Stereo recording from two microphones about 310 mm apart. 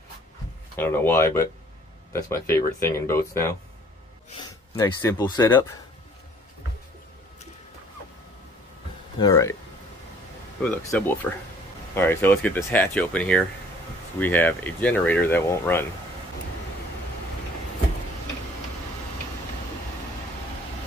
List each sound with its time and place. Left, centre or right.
0.7 s speech: centre
9.2 s speech: centre
10.6 s speech: centre